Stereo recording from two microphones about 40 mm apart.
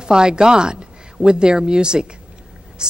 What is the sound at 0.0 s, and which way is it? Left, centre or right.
A woman's voice, centre.